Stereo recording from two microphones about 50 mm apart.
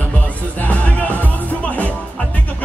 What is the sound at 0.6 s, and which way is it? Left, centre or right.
Music, left.